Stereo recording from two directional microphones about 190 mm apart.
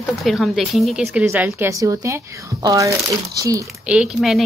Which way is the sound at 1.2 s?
10° right (ahead or behind).